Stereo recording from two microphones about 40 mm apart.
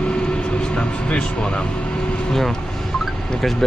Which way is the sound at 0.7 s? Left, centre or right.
Left.